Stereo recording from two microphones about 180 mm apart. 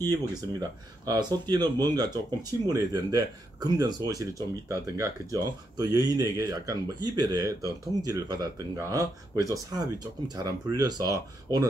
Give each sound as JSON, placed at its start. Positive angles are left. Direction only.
{"t": 0.1, "sound": "speech", "side_deg": -20}